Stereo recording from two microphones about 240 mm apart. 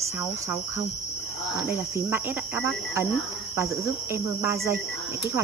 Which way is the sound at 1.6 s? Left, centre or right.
Centre.